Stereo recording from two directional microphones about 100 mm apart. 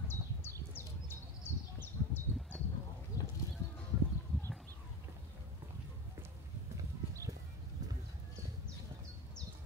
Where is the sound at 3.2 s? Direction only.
35° left (ahead or behind).